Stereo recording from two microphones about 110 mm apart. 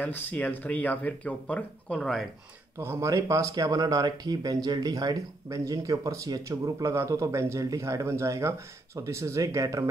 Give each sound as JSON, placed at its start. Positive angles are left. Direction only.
{"t": 0.0, "sound": "speech", "side_deg": 15}
{"t": 2.8, "sound": "speech", "side_deg": -25}